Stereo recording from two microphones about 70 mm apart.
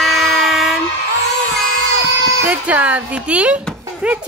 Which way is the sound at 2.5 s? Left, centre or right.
Right.